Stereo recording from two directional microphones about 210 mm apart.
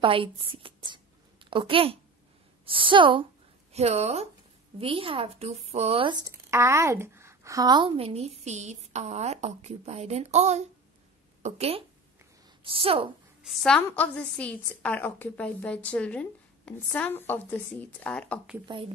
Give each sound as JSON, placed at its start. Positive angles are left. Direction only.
{"t": 0.0, "sound": "speech", "side_deg": -25}
{"t": 0.6, "sound": "a sound", "side_deg": -25}
{"t": 2.6, "sound": "a woman's voice", "side_deg": -25}
{"t": 13.4, "sound": "a woman's voice", "side_deg": 0}